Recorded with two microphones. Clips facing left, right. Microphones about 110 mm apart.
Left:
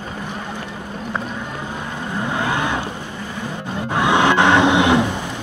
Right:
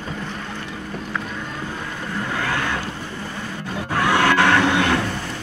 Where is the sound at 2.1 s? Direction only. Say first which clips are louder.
Left 3 dB; 20° left (ahead or behind).